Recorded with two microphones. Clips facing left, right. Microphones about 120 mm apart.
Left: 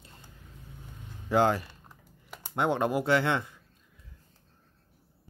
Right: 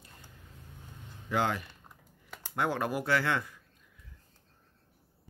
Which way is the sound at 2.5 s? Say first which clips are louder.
Left 4 dB; 25° left (ahead or behind).